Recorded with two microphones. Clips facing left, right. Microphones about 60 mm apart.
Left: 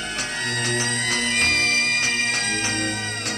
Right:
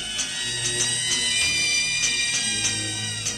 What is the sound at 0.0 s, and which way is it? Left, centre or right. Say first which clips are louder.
Music: left 5 dB; left.